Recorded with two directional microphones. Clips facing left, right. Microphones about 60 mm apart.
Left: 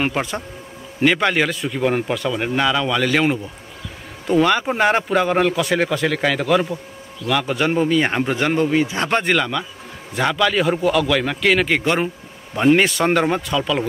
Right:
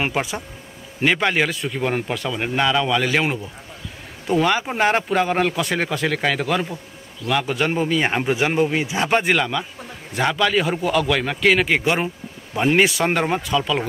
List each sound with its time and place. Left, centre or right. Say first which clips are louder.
0.0 s a man's voice: left 1 dB; centre